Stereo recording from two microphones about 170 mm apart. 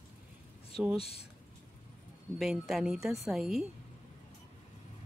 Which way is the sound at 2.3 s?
Centre (ahead or behind).